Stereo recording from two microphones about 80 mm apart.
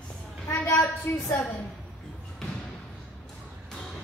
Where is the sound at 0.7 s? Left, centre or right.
Left.